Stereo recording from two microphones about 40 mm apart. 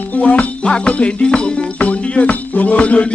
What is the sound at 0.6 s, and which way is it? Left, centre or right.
Music, left.